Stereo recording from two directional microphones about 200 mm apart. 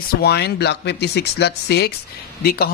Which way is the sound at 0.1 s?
55° left (ahead or behind).